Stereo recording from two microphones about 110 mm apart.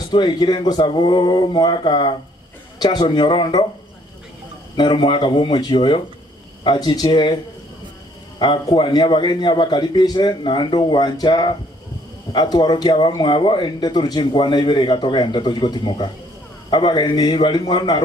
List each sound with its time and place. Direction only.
0.1 s speech: 40° left (ahead or behind)
4.7 s speech: 45° left (ahead or behind)
8.4 s speech: 45° left (ahead or behind)